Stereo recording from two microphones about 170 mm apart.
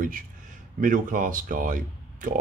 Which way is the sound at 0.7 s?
50° right (ahead or behind).